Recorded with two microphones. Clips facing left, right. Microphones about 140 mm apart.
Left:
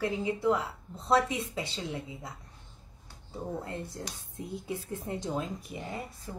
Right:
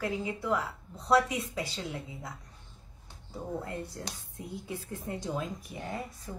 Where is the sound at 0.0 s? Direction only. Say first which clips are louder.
Left 4 dB; 25° left (ahead or behind).